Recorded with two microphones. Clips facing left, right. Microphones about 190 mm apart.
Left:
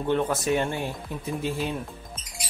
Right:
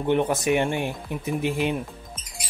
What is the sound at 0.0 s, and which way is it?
Speech, 15° right (ahead or behind).